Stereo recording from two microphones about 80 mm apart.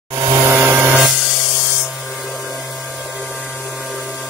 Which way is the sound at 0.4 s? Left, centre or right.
Right.